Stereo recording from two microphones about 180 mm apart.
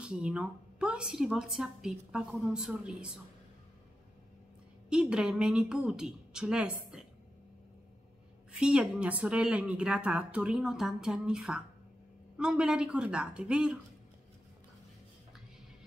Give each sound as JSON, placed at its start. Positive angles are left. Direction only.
{"t": 0.0, "sound": "a woman's voice", "side_deg": -5}
{"t": 4.8, "sound": "a woman's voice", "side_deg": -5}
{"t": 8.5, "sound": "a woman's voice", "side_deg": -5}